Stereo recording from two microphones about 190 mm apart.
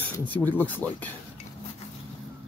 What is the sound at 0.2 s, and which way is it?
Speech, 10° left (ahead or behind).